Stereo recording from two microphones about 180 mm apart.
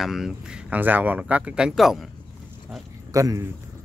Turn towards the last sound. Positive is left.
turn(degrees=-20)  # may be behind; listen again after turning